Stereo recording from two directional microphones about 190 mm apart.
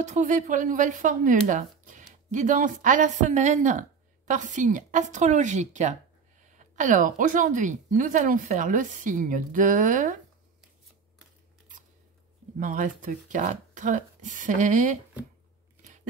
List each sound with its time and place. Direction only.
0.0 s speech: 40° right (ahead or behind)
12.5 s speech: 45° right (ahead or behind)